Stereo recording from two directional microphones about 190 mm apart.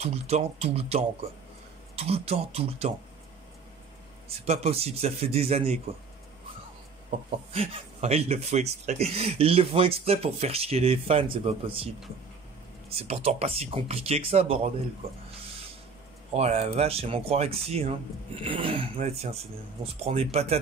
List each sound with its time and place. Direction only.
0.0 s speech: 35° right (ahead or behind)
4.3 s speech: 30° right (ahead or behind)
7.1 s speech: 30° right (ahead or behind)
12.9 s speech: 30° right (ahead or behind)
16.3 s speech: 35° right (ahead or behind)